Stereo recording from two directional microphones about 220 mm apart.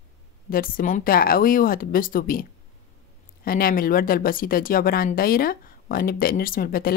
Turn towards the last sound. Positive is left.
turn(degrees=40)  # may be behind; listen again after turning